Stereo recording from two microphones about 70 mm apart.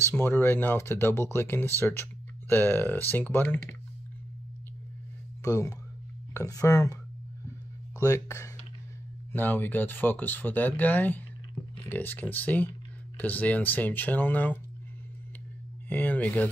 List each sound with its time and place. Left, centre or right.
0.2 s speech: left
5.4 s speech: left
8.0 s speech: left
9.3 s speech: left
15.9 s speech: left